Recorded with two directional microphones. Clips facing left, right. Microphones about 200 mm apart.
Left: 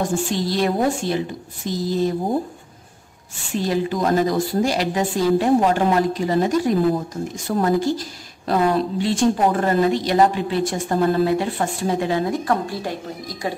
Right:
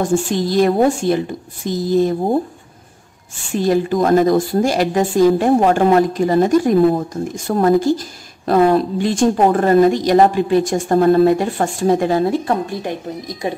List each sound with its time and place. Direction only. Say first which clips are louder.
0.3 s a woman's voice: right 6 dB; 50° right (ahead or behind)
3.5 s a woman's voice: right 6 dB; 50° right (ahead or behind)
12.3 s speech: right 3 dB; 25° right (ahead or behind)